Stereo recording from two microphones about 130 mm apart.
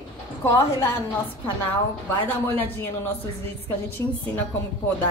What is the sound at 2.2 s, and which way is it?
Speech, 15° left (ahead or behind).